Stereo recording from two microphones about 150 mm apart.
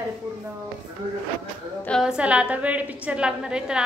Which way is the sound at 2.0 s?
5° right (ahead or behind).